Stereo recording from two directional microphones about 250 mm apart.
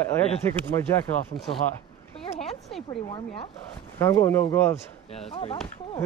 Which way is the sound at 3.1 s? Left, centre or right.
Left.